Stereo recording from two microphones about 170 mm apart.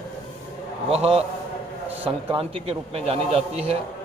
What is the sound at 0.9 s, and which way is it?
Speech, 35° right (ahead or behind).